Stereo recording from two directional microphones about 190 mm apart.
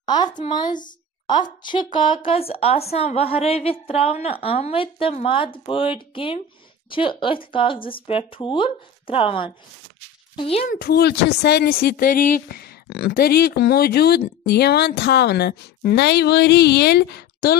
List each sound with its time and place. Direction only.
0.0 s a woman's voice: 20° left (ahead or behind)
10.7 s speech: 55° left (ahead or behind)